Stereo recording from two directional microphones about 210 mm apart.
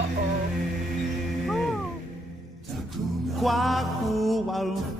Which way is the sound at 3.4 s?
Centre (ahead or behind).